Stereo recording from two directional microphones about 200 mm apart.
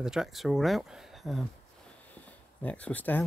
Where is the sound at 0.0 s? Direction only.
5° right (ahead or behind).